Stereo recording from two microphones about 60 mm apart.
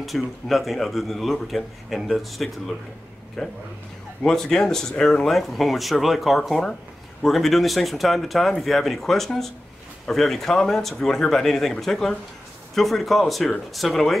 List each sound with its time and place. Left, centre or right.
0.0 s speech: centre